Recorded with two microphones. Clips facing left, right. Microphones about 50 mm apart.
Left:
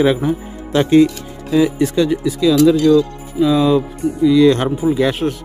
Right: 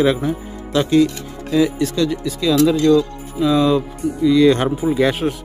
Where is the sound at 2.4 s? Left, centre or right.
Centre.